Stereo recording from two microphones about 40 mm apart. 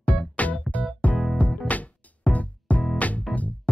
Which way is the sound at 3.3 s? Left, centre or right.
Centre.